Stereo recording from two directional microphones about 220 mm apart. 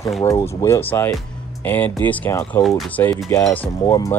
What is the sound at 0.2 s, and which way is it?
Speech, 15° left (ahead or behind).